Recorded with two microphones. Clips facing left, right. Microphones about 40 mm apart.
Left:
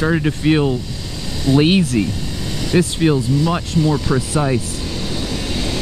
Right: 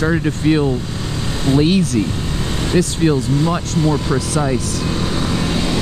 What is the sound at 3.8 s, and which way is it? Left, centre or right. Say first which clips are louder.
Speech: even; right.